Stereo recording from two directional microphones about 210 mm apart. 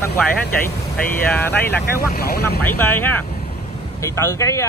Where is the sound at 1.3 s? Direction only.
10° left (ahead or behind).